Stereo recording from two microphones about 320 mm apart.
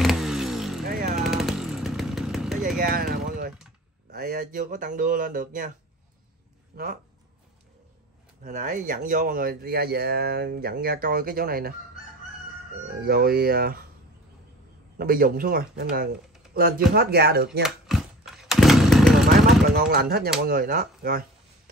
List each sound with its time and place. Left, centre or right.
0.0 s vehicle: centre
0.8 s a sound: right
1.2 s chainsaw: centre
2.8 s a sound: right
4.1 s speech: right
6.7 s speech: right
8.5 s speech: right
13.0 s speech: right
15.0 s speech: right
17.6 s chainsaw: centre
19.9 s speech: right